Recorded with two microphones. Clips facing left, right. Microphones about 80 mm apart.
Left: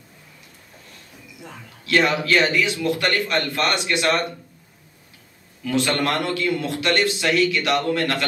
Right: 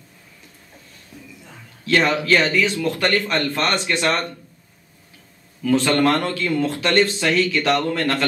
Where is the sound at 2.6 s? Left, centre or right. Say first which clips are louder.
Right 1 dB; right.